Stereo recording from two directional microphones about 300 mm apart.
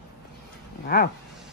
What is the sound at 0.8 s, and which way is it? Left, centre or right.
Speech, left.